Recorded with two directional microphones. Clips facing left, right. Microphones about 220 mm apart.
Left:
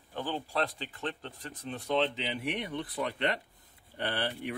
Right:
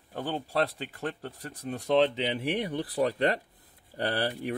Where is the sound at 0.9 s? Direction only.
35° right (ahead or behind).